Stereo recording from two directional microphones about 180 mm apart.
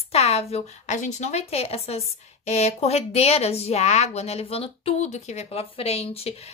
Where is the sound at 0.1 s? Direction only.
35° left (ahead or behind).